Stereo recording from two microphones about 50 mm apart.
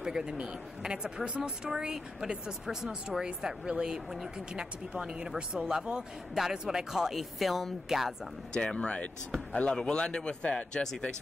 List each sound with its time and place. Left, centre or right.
0.0 s speech: centre
8.5 s speech: left